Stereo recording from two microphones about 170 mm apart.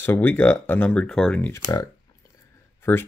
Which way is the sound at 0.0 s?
10° left (ahead or behind).